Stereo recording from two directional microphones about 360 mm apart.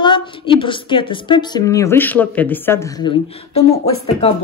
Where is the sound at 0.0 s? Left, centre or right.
Centre.